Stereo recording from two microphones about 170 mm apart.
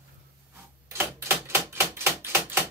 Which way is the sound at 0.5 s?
15° right (ahead or behind).